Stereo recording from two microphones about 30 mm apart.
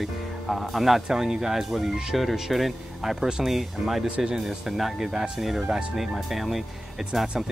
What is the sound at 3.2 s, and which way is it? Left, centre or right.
Speech, right.